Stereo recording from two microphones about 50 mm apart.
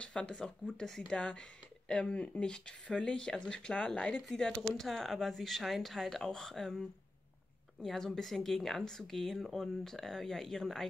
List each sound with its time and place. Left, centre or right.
0.0 s a woman's voice: centre
4.3 s a woman's voice: centre